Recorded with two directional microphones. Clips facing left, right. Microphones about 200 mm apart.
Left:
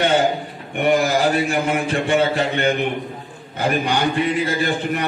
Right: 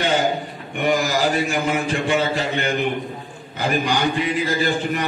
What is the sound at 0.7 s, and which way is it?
A man's voice, 60° left (ahead or behind).